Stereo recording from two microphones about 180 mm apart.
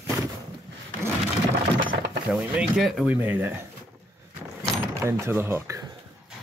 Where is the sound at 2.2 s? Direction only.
5° right (ahead or behind).